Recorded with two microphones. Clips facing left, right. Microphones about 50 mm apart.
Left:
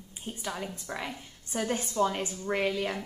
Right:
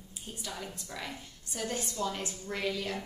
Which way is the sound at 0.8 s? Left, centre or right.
Left.